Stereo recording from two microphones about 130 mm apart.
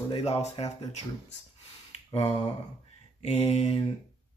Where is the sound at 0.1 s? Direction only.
55° left (ahead or behind).